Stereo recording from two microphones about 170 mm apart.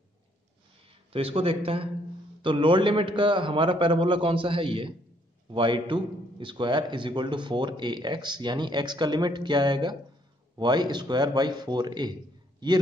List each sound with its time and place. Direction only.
1.1 s a man's voice: 35° right (ahead or behind)